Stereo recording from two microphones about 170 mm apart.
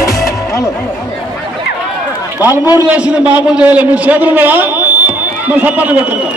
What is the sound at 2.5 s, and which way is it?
Speech, 20° left (ahead or behind).